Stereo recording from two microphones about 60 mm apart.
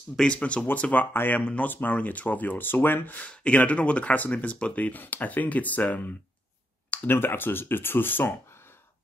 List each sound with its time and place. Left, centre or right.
0.2 s speech: centre
1.1 s speech: left
1.4 s speech: centre
1.7 s speech: left
3.3 s speech: left